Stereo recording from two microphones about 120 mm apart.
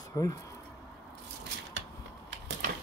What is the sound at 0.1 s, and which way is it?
Speech, 30° left (ahead or behind).